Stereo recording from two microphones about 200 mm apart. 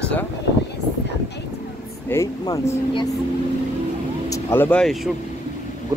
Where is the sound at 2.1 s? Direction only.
15° left (ahead or behind).